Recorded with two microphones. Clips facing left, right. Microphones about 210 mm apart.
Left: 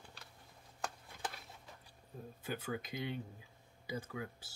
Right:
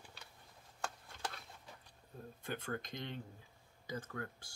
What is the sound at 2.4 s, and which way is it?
Speech, 5° left (ahead or behind).